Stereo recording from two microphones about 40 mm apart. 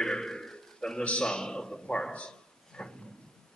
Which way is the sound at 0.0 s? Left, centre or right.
Centre.